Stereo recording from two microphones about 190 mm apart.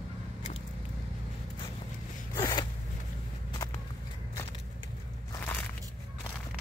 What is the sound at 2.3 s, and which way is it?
Zipper, 25° left (ahead or behind).